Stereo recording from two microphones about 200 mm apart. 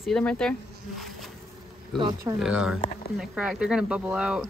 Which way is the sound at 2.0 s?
20° right (ahead or behind).